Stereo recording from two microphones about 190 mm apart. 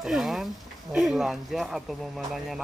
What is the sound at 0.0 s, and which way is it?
Speech, centre (ahead or behind).